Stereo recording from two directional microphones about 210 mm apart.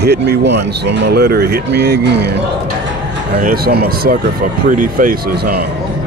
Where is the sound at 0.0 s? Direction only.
50° right (ahead or behind).